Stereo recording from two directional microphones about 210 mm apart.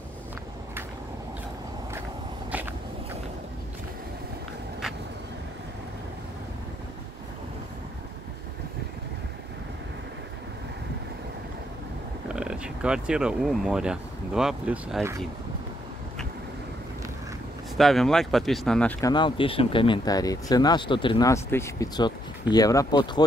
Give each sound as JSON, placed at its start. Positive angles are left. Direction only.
{"t": 2.5, "sound": "vehicle", "side_deg": -10}
{"t": 12.3, "sound": "speech", "side_deg": -5}
{"t": 17.7, "sound": "speech", "side_deg": 0}